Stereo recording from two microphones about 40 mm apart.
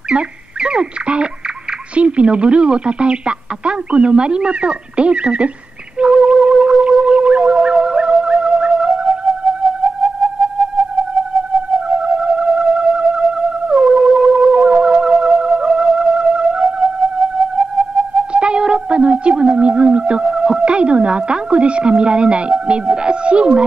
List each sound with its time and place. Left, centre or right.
0.1 s speech: right
5.9 s music: right
7.2 s music: right
11.9 s theremin: right
12.6 s music: centre
13.3 s theremin: right
14.0 s siren: centre
15.0 s music: centre
18.4 s a sound: right